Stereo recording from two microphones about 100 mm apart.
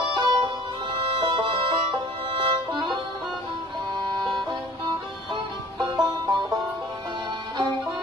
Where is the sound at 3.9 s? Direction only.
45° right (ahead or behind).